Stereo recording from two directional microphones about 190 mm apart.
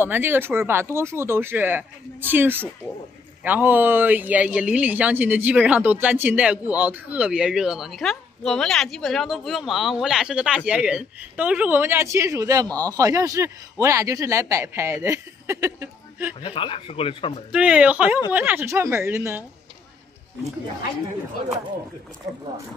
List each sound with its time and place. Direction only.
0.0 s a man's voice: 10° right (ahead or behind)
16.3 s speech: 25° left (ahead or behind)
17.5 s a man's voice: 5° right (ahead or behind)